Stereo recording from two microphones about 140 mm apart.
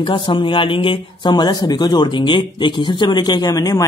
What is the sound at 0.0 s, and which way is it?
Speech, 35° left (ahead or behind).